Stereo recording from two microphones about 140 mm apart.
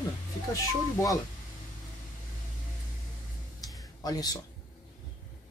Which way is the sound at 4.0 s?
25° left (ahead or behind).